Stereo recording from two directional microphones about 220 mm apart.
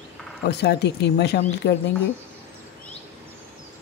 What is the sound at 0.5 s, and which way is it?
Speech, 50° left (ahead or behind).